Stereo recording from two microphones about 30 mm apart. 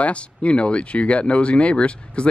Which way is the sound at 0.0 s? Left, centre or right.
Left.